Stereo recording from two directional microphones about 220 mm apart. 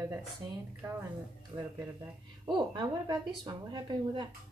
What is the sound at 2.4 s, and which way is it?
A woman's voice, 20° right (ahead or behind).